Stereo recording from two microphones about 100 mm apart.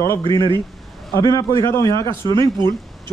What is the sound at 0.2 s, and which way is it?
Speech, 55° right (ahead or behind).